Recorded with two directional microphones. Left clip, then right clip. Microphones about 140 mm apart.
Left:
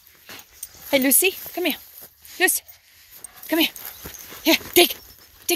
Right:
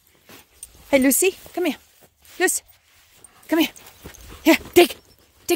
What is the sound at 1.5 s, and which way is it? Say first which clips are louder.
Speech: right 1 dB; 45° right (ahead or behind).